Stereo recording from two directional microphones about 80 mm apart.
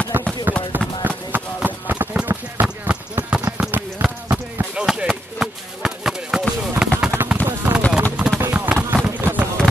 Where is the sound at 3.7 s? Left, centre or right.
Right.